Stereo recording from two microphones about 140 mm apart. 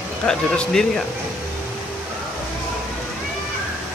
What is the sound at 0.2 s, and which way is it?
Speech, 5° left (ahead or behind).